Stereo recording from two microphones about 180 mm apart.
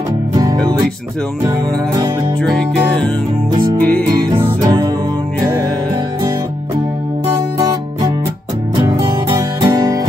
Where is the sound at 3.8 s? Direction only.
10° left (ahead or behind).